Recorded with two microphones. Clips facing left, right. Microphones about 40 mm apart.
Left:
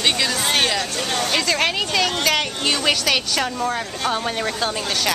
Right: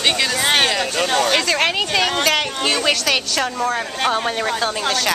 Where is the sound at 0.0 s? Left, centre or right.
Centre.